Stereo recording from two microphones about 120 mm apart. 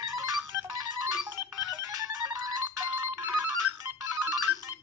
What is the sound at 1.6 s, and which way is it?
Music, 25° right (ahead or behind).